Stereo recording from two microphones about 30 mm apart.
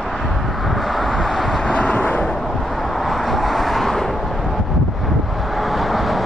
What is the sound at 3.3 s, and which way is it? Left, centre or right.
Vehicle, centre.